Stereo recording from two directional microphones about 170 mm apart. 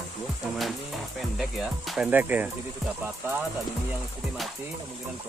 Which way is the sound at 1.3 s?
Centre (ahead or behind).